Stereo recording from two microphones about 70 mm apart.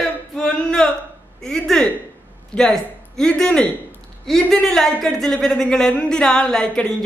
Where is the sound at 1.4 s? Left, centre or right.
Centre.